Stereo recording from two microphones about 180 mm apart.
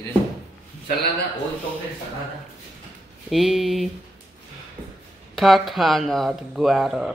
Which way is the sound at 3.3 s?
Centre (ahead or behind).